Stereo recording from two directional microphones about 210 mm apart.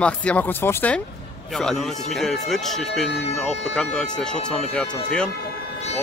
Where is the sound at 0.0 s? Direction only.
5° left (ahead or behind).